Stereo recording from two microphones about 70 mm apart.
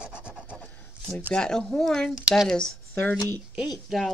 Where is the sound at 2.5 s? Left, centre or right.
Centre.